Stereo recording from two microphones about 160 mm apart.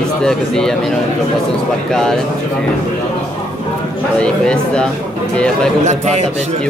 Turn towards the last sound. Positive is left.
turn(degrees=-45)  # may be behind; listen again after turning